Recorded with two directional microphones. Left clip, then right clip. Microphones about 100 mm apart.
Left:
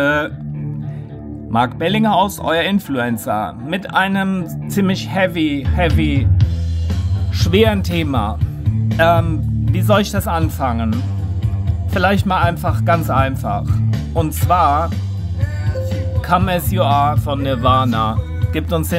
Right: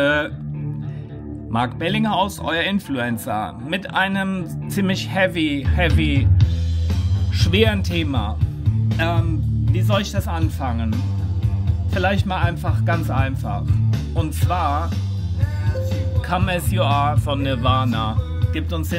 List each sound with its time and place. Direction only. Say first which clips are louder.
0.0 s music: left 2 dB; 20° left (ahead or behind)
1.5 s speech: left 5 dB; 30° left (ahead or behind)
4.8 s speech: left 2 dB; 30° left (ahead or behind)
7.3 s speech: left 4 dB; 40° left (ahead or behind); by 8.4 s 55° left (ahead or behind)
8.9 s speech: left 10 dB; 90° left; by 10.9 s 60° left (ahead or behind)
12.0 s speech: left 6 dB; 60° left (ahead or behind)
14.1 s speech: left 9 dB; 60° left (ahead or behind)
15.7 s music: left 3 dB; 10° right (ahead or behind)
16.3 s speech: left 6 dB; 45° left (ahead or behind)
18.5 s music: left 8 dB; 85° left